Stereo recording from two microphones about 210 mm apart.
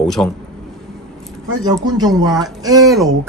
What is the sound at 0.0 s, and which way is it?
Speech, centre (ahead or behind).